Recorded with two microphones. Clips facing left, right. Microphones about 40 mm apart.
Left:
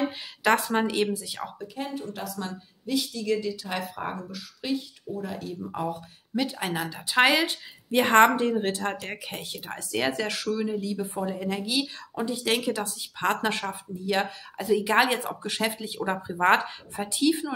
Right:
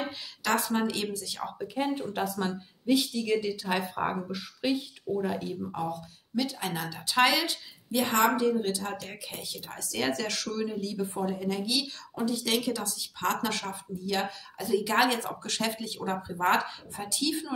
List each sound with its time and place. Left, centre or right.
0.4 s speech: left
2.0 s speech: right; by 5.6 s centre
5.8 s speech: left
9.9 s speech: centre
11.3 s speech: left